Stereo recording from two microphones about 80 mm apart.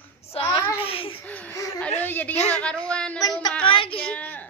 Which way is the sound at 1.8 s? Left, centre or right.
Centre.